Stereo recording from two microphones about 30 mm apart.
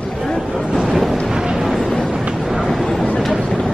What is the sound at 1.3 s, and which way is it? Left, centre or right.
Vehicle, right.